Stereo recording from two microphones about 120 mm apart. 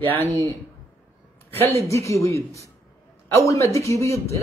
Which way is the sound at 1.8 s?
25° left (ahead or behind).